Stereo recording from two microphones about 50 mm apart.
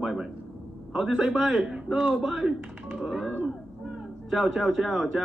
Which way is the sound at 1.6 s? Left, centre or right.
Right.